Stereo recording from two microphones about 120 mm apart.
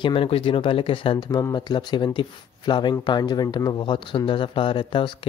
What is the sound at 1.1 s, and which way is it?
Speech, 35° left (ahead or behind).